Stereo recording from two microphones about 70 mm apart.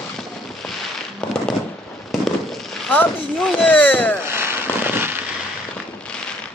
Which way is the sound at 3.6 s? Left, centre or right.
Left.